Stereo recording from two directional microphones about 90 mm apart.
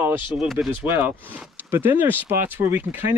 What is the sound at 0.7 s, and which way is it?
Speech, 20° right (ahead or behind).